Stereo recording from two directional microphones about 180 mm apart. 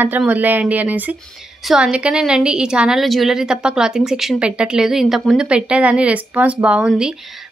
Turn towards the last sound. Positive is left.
turn(degrees=-5)  # may be behind; listen again after turning